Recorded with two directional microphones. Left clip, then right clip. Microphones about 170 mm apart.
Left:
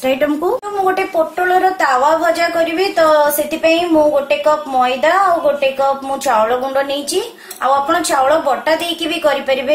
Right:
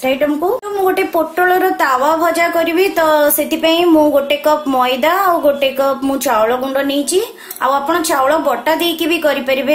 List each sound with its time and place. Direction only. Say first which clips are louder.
0.0 s a woman's voice: right 1 dB; 10° right (ahead or behind)
0.8 s a woman's voice: right 1 dB; 40° right (ahead or behind)
6.2 s a woman's voice: left 1 dB; 30° right (ahead or behind)